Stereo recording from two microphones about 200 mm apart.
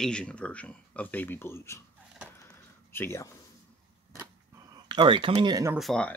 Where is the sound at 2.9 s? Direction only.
10° left (ahead or behind).